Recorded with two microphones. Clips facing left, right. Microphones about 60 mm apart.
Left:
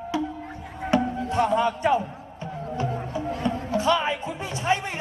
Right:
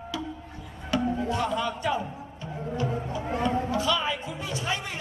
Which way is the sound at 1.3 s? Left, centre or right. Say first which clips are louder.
Left 6 dB; left.